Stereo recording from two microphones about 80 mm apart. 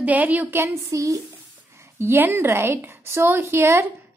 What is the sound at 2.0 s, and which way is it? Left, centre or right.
A woman's voice, right.